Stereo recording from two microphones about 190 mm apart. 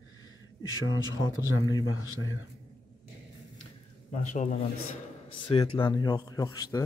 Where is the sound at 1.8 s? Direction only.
90° left.